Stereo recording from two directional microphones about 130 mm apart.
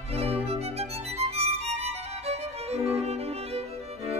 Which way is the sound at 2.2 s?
55° right (ahead or behind).